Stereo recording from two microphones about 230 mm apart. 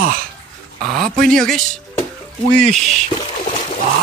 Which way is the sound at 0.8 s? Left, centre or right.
Centre.